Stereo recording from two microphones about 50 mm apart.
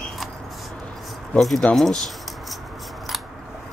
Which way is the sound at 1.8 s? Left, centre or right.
Centre.